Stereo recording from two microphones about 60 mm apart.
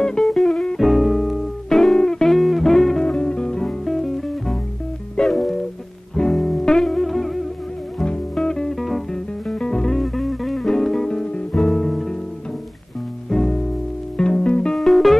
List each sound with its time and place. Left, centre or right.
0.0 s music: centre
3.1 s music: centre
3.8 s music: centre
8.0 s music: centre
9.5 s music: centre
11.1 s guitar: centre
13.3 s music: centre
14.1 s music: centre
14.8 s music: centre